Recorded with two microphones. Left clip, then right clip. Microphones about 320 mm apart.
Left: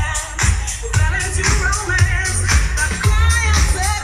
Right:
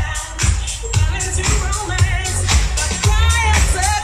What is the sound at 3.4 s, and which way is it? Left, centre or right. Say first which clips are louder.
Music: right 2 dB; right.